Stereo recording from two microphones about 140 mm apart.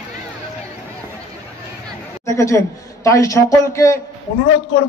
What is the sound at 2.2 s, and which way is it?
A woman's voice, 20° left (ahead or behind).